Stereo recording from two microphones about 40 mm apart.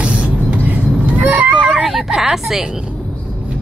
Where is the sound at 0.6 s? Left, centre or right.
Right.